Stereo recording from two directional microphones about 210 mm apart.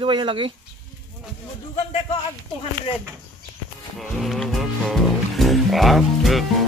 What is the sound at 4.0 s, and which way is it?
Speech, centre (ahead or behind).